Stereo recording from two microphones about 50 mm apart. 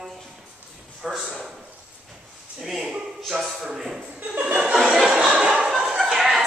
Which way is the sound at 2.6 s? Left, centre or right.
Centre.